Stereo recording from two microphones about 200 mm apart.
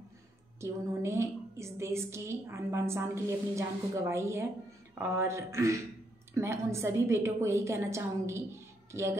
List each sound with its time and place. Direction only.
0.6 s a woman's voice: 15° right (ahead or behind)